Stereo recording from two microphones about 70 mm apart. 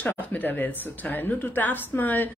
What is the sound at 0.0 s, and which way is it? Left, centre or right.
A woman's voice, left.